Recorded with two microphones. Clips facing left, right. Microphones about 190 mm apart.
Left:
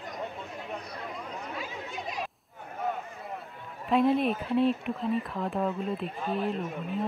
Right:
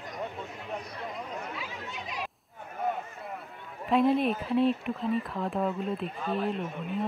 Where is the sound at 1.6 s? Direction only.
45° left (ahead or behind).